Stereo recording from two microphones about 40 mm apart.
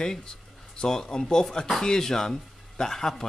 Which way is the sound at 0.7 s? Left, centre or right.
Centre.